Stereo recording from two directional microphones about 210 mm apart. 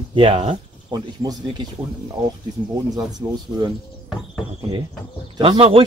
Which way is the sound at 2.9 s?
20° right (ahead or behind).